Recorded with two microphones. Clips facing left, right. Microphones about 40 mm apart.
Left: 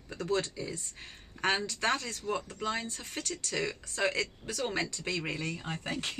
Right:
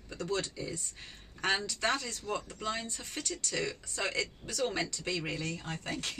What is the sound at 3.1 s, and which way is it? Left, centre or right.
Speech, left.